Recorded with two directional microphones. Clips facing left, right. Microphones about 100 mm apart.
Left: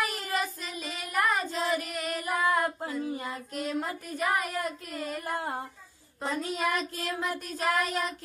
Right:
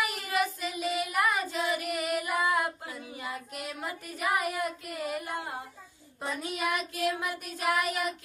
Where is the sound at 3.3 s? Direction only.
5° right (ahead or behind).